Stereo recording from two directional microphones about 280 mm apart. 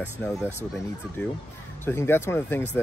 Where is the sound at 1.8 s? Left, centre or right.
Centre.